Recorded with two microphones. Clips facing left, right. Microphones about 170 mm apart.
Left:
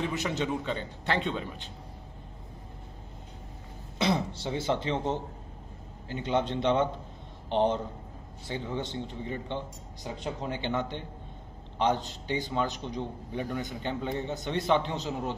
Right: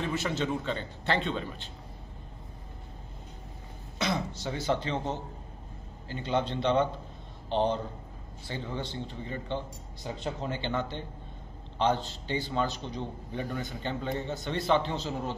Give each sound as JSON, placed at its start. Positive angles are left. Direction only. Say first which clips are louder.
{"t": 0.1, "sound": "a man's voice", "louder": "even", "side_deg": 15}
{"t": 4.0, "sound": "a man's voice", "louder": "left 3 dB", "side_deg": 30}